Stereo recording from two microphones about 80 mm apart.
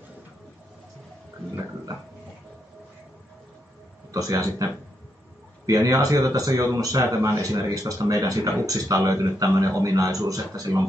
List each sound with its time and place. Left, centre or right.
4.1 s speech: right
5.7 s speech: right